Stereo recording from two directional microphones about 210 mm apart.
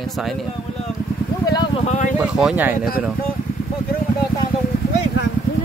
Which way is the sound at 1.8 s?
35° left (ahead or behind).